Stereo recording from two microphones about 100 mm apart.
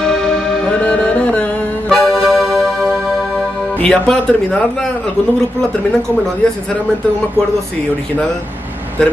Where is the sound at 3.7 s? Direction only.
15° left (ahead or behind).